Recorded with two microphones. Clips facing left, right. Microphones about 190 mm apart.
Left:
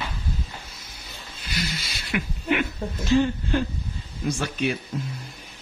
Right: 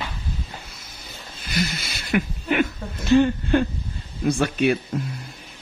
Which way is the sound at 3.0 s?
60° right (ahead or behind).